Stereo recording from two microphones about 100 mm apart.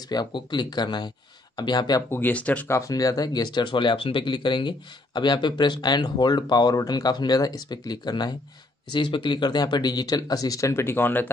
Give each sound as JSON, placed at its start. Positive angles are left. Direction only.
{"t": 0.1, "sound": "speech", "side_deg": 45}
{"t": 2.0, "sound": "speech", "side_deg": 20}
{"t": 2.7, "sound": "speech", "side_deg": 35}